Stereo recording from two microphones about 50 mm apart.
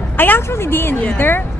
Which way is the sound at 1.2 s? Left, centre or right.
Left.